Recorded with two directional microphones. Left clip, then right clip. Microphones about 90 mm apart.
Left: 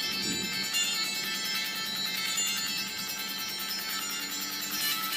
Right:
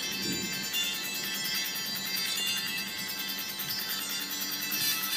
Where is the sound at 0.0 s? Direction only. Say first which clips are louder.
Left 2 dB; 15° left (ahead or behind).